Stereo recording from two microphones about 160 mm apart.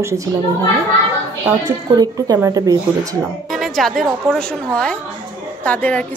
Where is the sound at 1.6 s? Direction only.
25° right (ahead or behind).